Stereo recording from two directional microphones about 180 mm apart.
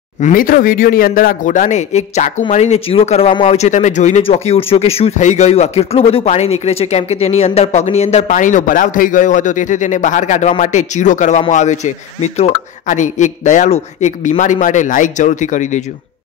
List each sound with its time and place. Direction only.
0.2 s speech: 50° left (ahead or behind)